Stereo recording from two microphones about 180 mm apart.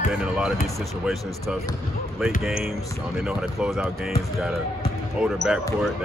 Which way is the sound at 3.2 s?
Centre (ahead or behind).